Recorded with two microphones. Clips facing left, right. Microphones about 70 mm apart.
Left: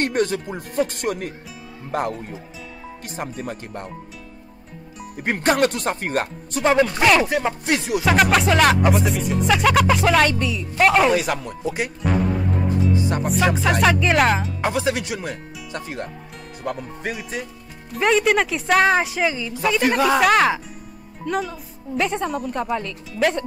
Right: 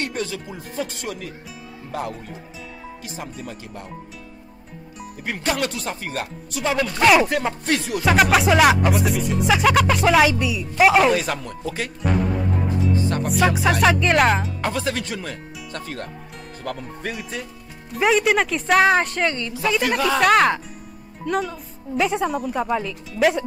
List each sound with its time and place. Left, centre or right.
0.0 s speech: left
3.2 s speech: left
5.2 s speech: left
7.2 s speech: centre
13.2 s speech: centre
14.6 s speech: centre